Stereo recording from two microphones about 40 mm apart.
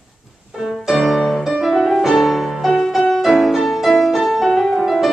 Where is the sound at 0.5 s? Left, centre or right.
Centre.